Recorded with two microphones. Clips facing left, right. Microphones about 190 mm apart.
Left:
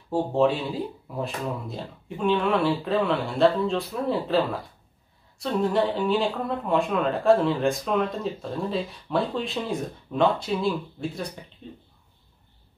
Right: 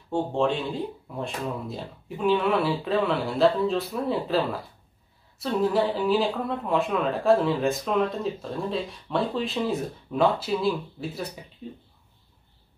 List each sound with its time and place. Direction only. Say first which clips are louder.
0.1 s speech: left 2 dB; 5° left (ahead or behind)